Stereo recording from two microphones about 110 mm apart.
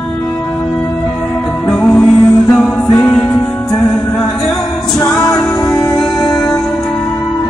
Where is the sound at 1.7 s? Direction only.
10° left (ahead or behind).